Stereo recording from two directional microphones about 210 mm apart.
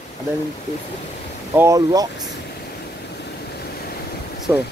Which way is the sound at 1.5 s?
15° right (ahead or behind).